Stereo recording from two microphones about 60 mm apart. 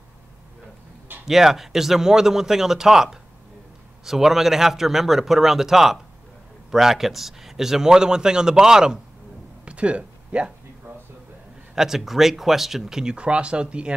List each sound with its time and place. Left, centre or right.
1.2 s a man's voice: centre
9.7 s a sound: centre
11.7 s a man's voice: centre